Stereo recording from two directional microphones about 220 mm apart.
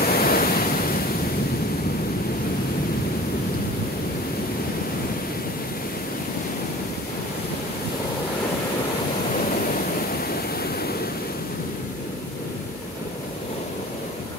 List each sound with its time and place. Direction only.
0.0 s waves: 45° left (ahead or behind)